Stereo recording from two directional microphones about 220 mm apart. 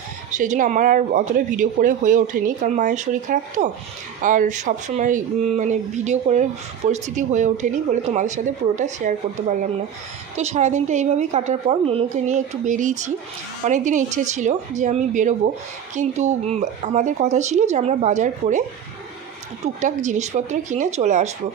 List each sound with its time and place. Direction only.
0.3 s speech: 35° right (ahead or behind)
19.6 s speech: 35° right (ahead or behind)